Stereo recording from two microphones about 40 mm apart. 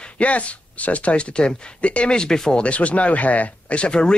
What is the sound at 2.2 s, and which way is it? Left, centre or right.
Speech, centre.